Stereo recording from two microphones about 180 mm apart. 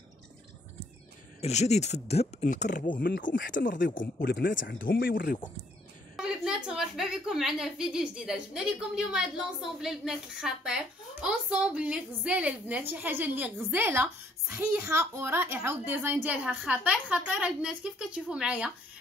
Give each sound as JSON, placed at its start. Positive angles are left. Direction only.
{"t": 1.4, "sound": "speech", "side_deg": 40}
{"t": 4.4, "sound": "speech", "side_deg": 90}
{"t": 4.8, "sound": "speech", "side_deg": 55}
{"t": 6.1, "sound": "a woman's voice", "side_deg": -5}